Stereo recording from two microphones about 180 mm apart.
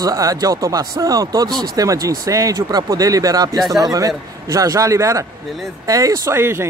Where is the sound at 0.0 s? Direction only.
20° right (ahead or behind).